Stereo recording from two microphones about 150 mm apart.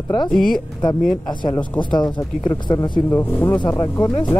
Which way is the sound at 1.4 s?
30° left (ahead or behind).